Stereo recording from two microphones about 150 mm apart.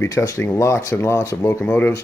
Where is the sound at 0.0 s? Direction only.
20° left (ahead or behind).